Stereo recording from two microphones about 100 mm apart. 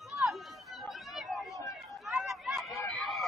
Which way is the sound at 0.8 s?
Centre (ahead or behind).